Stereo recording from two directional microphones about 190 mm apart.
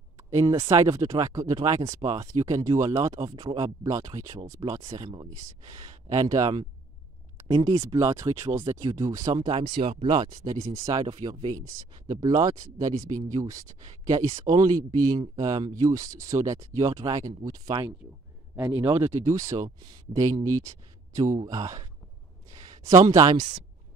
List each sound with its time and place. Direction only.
0.2 s speech: 15° right (ahead or behind)
18.9 s speech: 15° right (ahead or behind)
22.8 s speech: 15° right (ahead or behind)